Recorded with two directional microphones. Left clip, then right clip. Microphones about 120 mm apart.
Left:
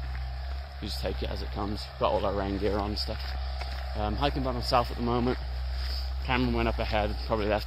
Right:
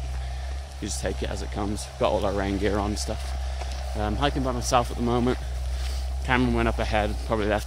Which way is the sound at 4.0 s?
15° right (ahead or behind).